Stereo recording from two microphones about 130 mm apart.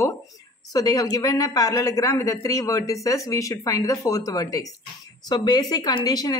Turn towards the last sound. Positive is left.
turn(degrees=30)  # may be behind; listen again after turning